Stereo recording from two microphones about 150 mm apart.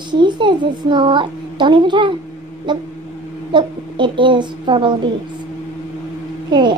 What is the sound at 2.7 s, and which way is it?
A woman's voice, 30° right (ahead or behind).